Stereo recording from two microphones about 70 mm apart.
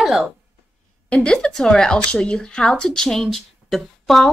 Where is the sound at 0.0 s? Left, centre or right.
Centre.